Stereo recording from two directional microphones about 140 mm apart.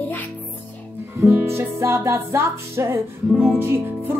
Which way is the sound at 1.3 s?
20° right (ahead or behind).